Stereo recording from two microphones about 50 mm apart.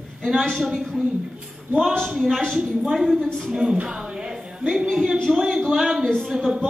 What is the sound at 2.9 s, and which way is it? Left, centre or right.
A woman's voice, centre.